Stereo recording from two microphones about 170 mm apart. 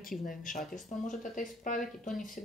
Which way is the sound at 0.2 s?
55° left (ahead or behind).